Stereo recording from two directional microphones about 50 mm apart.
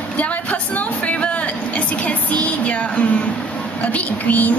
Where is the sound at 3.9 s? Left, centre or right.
Left.